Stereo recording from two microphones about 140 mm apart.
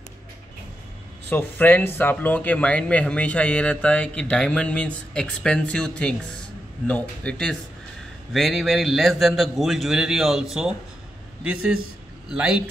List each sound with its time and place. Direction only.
1.3 s a man's voice: 15° left (ahead or behind); by 12.6 s 5° right (ahead or behind)